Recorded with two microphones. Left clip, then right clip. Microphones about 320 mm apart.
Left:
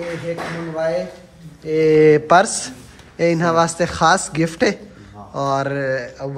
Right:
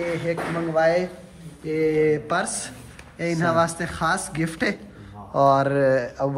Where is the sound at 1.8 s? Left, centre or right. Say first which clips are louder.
Left 9 dB; left; by 4.7 s centre.